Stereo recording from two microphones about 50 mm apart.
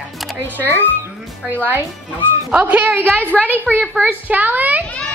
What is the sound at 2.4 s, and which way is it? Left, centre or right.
Speech, right.